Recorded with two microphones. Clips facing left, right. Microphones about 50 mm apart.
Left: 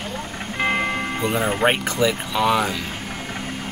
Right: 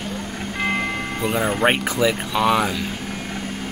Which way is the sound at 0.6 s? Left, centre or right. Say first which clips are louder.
Left 2 dB; centre.